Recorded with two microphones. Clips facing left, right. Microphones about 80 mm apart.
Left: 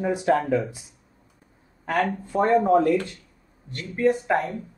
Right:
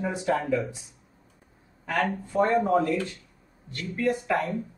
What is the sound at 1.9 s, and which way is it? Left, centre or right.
Speech, left.